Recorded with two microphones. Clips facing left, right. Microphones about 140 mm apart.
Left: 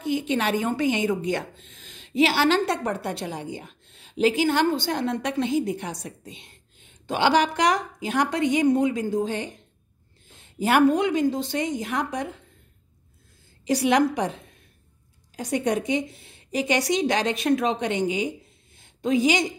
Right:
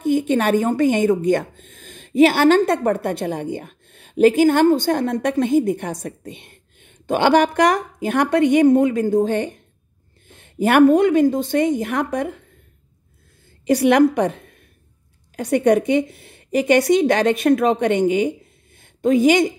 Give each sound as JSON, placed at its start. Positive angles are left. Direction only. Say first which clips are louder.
{"t": 0.0, "sound": "a woman's voice", "louder": "right 7 dB", "side_deg": -50}
{"t": 13.7, "sound": "a woman's voice", "louder": "right 6 dB", "side_deg": -55}